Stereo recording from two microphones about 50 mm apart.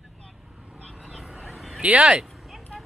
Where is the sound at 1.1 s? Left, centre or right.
Centre.